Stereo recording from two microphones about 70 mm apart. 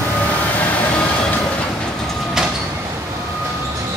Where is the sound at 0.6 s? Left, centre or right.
Left.